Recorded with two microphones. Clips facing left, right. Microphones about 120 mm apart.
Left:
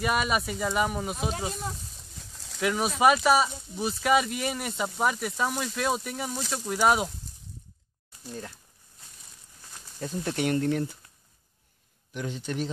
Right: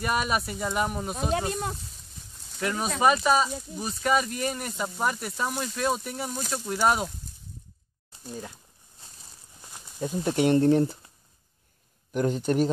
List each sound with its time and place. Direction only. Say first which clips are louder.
0.0 s speech: even; centre (ahead or behind)
2.6 s speech: left 1 dB; 10° left (ahead or behind)
6.5 s speech: left 1 dB; 10° left (ahead or behind)
8.3 s speech: right 1 dB; 10° right (ahead or behind)
9.6 s speech: right 4 dB; 15° right (ahead or behind); by 11.0 s 35° right (ahead or behind)
12.1 s speech: right 9 dB; 45° right (ahead or behind)